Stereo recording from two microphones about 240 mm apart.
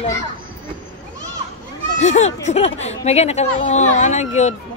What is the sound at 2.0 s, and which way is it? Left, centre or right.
Speech, left.